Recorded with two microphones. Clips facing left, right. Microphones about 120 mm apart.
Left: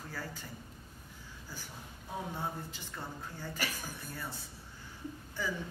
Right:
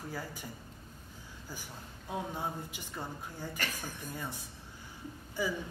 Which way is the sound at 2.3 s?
15° right (ahead or behind).